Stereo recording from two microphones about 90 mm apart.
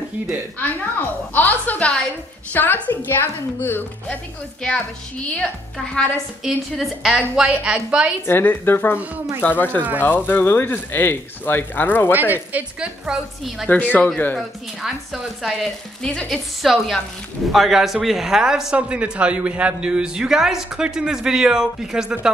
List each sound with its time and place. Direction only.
0.6 s speech: 20° left (ahead or behind)
5.8 s a woman's voice: centre (ahead or behind)
8.3 s speech: 25° left (ahead or behind)
12.1 s speech: 20° right (ahead or behind)
13.9 s speech: 15° left (ahead or behind)
14.8 s a woman's voice: 5° right (ahead or behind)
16.0 s a woman's voice: 10° left (ahead or behind)